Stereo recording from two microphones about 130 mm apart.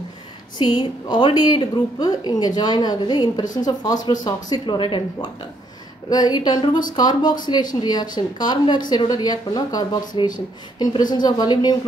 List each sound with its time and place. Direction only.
0.6 s speech: 35° left (ahead or behind)